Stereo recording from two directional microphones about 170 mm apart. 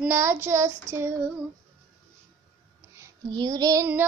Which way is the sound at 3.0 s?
25° right (ahead or behind).